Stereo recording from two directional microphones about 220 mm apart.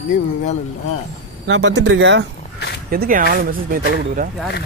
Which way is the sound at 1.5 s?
55° right (ahead or behind).